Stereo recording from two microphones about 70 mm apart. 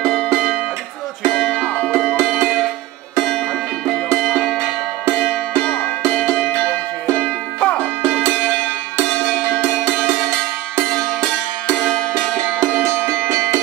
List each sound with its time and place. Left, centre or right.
0.1 s music: centre
4.1 s music: centre
5.6 s music: centre
12.9 s music: centre